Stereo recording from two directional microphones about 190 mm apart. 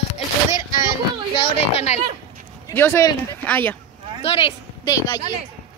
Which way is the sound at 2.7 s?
15° left (ahead or behind).